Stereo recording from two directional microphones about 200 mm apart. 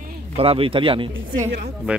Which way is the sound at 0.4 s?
30° right (ahead or behind).